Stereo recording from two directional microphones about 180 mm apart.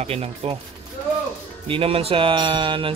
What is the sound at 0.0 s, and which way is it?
Speech, 35° right (ahead or behind).